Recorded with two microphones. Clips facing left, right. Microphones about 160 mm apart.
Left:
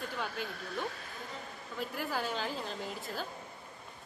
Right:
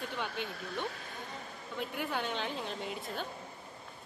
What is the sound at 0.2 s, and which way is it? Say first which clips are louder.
Speech: even; centre (ahead or behind).